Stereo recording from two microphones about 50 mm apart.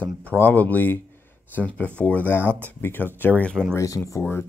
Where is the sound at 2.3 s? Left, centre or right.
Left.